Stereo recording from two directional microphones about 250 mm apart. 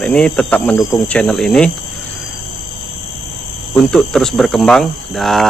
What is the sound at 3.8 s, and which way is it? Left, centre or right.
A man's voice, centre.